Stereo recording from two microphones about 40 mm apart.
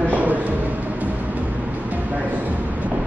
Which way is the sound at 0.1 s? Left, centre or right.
Right.